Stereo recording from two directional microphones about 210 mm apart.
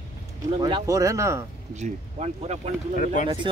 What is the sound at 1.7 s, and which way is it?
Speech, 35° right (ahead or behind).